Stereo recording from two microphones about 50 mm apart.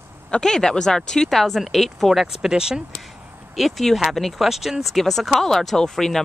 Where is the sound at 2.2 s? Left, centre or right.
Centre.